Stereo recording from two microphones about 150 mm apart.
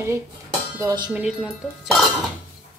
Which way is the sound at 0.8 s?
25° right (ahead or behind).